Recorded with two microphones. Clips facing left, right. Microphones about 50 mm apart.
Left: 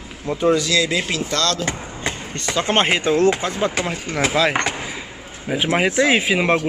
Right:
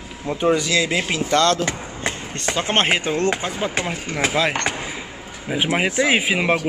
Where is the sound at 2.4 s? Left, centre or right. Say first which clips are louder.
Left 1 dB; centre.